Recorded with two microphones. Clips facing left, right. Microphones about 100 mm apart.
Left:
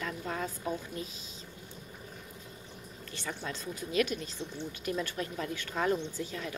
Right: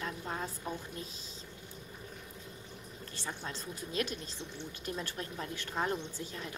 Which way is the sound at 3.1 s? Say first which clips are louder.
Left 3 dB; 30° right (ahead or behind).